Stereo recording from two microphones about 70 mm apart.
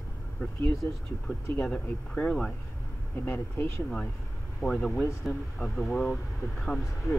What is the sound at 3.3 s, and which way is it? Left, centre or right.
Speech, left.